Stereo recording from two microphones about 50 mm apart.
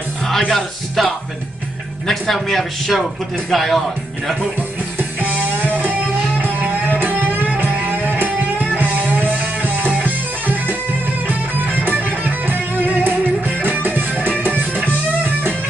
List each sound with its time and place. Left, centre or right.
0.5 s a man's voice: centre
4.9 s music: right